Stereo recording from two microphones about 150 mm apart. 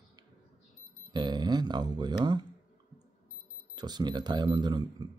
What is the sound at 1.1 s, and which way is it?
Speech, 30° right (ahead or behind).